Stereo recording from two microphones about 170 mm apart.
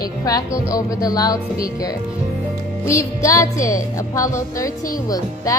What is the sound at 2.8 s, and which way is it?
A woman's voice, 20° left (ahead or behind).